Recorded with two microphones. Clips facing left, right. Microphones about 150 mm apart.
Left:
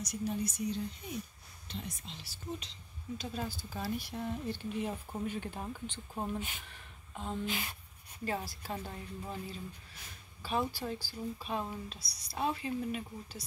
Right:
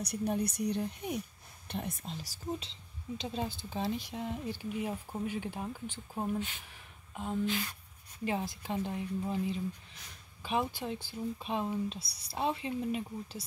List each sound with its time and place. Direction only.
0.0 s speech: 60° right (ahead or behind); by 2.7 s 40° right (ahead or behind)
3.2 s speech: 20° right (ahead or behind)
7.4 s speech: 15° left (ahead or behind)
8.3 s speech: 20° right (ahead or behind)